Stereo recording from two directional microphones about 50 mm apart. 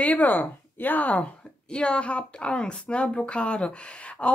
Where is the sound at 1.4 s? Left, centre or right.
Centre.